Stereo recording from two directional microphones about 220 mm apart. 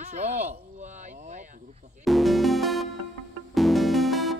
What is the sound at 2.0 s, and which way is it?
Music, centre (ahead or behind).